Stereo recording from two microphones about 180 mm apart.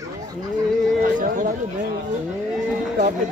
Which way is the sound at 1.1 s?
50° right (ahead or behind).